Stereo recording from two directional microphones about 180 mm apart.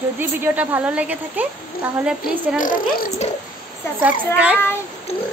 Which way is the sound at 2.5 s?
50° left (ahead or behind).